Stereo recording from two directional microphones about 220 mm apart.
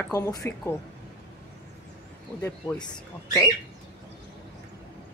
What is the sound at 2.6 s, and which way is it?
Speech, 15° left (ahead or behind).